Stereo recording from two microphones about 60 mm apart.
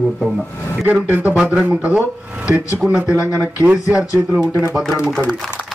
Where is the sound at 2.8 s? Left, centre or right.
Centre.